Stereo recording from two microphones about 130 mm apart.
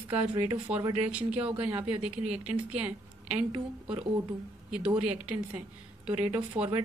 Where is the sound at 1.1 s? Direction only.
10° right (ahead or behind).